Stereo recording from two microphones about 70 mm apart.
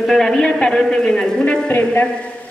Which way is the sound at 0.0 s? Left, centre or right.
Centre.